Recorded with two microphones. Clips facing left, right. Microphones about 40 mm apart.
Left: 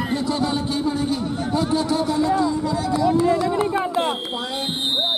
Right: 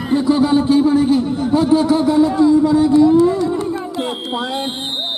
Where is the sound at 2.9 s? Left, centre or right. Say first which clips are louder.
Right 4 dB; left.